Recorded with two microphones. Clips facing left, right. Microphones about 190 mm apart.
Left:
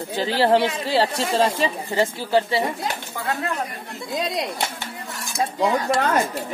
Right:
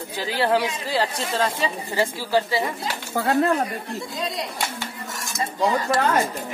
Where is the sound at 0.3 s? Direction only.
30° left (ahead or behind).